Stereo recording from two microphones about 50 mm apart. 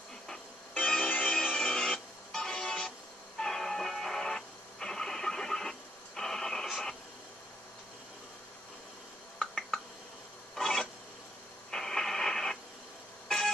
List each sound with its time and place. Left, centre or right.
0.7 s music: centre
9.4 s a sound: centre
11.7 s radio: centre